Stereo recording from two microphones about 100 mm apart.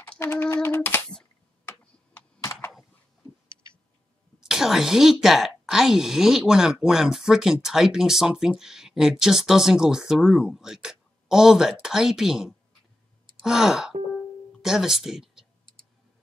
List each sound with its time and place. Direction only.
0.5 s typing: 25° left (ahead or behind)
4.4 s a woman's voice: 5° right (ahead or behind)
13.4 s sigh: 5° right (ahead or behind)
14.6 s speech: 5° right (ahead or behind)